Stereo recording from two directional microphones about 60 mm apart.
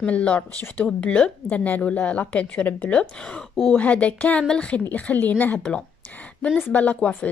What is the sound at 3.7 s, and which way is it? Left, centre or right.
A woman's voice, left.